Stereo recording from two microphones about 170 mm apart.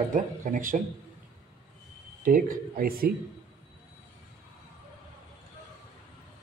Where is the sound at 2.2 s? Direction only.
60° right (ahead or behind).